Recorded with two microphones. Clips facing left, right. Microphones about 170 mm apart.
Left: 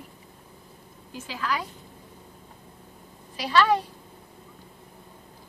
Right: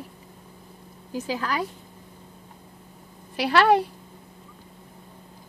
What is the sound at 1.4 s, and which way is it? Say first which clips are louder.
Speech: left 2 dB; 55° right (ahead or behind).